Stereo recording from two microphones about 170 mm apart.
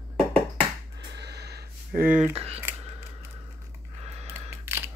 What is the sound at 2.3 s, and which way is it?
Speech, 35° right (ahead or behind).